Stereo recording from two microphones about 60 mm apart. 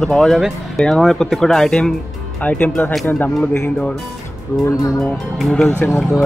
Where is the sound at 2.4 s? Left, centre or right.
Left.